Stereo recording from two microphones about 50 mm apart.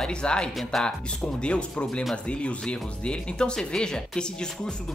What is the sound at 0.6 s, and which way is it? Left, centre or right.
Speech, centre.